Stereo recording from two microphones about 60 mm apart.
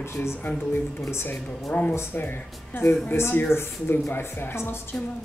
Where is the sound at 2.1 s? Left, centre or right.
Left.